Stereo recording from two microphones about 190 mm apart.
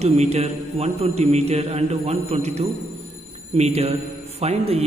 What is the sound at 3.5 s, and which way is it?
A man's voice, 35° right (ahead or behind).